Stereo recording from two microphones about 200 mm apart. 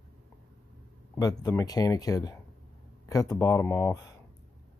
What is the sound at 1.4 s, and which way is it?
Speech, 15° left (ahead or behind).